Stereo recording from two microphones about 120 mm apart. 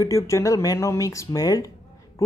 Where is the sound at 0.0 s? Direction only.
25° left (ahead or behind).